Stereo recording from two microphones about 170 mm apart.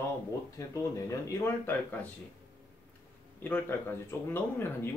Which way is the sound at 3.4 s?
15° left (ahead or behind).